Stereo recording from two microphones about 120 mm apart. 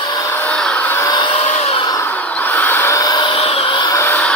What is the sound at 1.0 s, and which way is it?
Vehicle, 30° left (ahead or behind).